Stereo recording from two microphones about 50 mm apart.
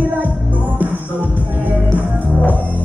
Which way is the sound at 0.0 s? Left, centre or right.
Right.